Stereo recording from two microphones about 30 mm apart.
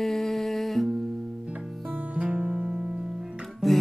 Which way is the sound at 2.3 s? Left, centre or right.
Right.